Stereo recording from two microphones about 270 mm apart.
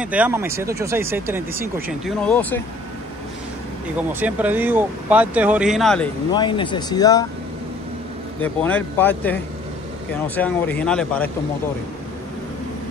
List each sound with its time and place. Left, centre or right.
0.0 s speech: centre
2.2 s speech: centre
4.1 s speech: centre
6.3 s speech: centre
8.4 s speech: centre